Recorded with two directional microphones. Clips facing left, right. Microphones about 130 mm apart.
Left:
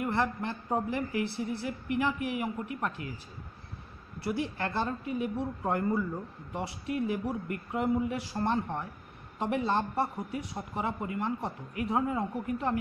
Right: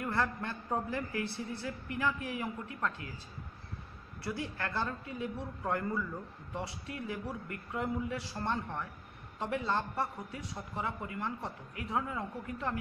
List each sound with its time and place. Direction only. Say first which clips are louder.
0.0 s a woman's voice: left 4 dB; 20° left (ahead or behind)
4.2 s a woman's voice: left 6 dB; 25° left (ahead or behind)